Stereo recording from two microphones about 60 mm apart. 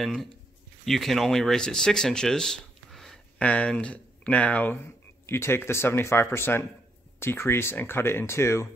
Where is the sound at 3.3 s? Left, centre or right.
Left.